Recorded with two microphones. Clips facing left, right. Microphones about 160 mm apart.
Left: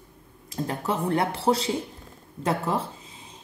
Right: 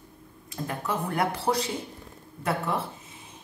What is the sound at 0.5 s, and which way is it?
A woman's voice, 30° left (ahead or behind).